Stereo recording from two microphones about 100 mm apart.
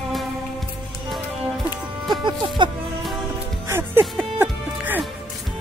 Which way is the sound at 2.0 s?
50° right (ahead or behind).